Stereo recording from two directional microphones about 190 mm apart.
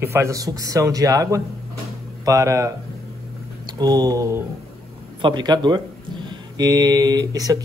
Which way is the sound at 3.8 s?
20° right (ahead or behind).